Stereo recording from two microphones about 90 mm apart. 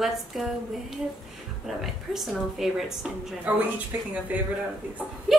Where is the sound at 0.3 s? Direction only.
5° right (ahead or behind).